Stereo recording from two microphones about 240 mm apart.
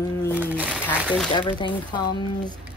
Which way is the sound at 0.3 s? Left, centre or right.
Centre.